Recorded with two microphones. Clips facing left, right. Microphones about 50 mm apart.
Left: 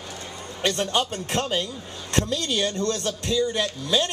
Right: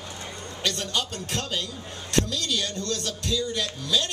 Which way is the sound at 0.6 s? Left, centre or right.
Left.